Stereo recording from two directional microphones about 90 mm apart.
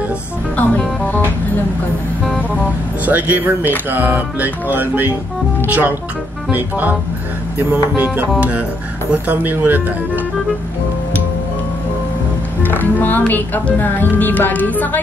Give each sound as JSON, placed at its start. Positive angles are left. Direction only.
{"t": 0.6, "sound": "music", "side_deg": 20}
{"t": 3.1, "sound": "music", "side_deg": -20}
{"t": 12.6, "sound": "speech", "side_deg": 20}